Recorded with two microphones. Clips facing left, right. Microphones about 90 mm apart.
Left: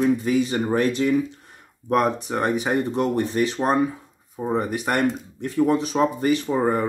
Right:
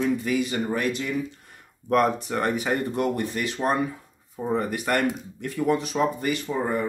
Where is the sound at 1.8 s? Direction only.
20° left (ahead or behind); by 6.8 s 40° left (ahead or behind).